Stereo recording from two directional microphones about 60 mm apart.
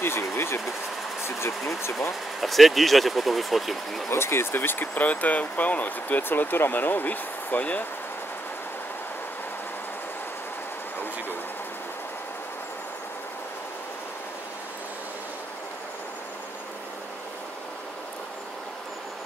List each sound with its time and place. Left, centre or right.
0.0 s vehicle: left
1.8 s speech: left
2.4 s speech: centre
4.1 s speech: left